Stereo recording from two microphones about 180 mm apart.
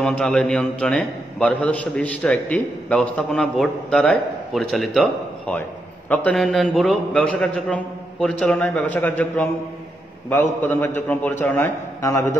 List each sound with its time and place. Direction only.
0.0 s a man's voice: 5° left (ahead or behind)